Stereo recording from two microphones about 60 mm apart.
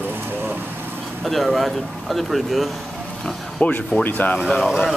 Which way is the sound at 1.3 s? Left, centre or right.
Centre.